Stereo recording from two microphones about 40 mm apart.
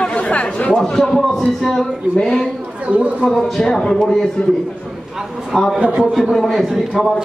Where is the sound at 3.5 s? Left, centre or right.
Centre.